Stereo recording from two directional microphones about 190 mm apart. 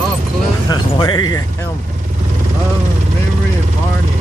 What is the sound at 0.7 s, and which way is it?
Music, 20° left (ahead or behind).